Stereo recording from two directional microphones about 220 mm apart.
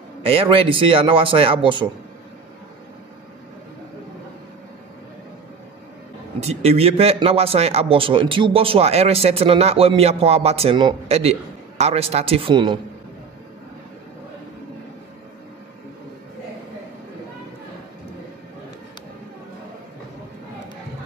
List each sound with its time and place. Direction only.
0.2 s a man's voice: 25° right (ahead or behind)
6.4 s a man's voice: 30° right (ahead or behind)